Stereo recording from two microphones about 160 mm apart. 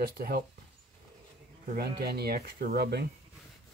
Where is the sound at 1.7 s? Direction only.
75° right (ahead or behind).